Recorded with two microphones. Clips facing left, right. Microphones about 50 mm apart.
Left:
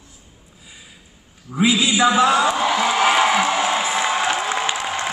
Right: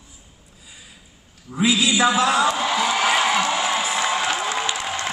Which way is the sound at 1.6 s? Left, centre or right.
Left.